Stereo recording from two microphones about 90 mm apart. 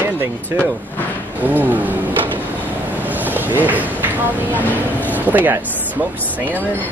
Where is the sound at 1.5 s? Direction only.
20° right (ahead or behind).